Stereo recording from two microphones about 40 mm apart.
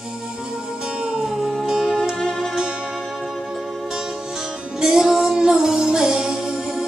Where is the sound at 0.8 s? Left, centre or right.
Right.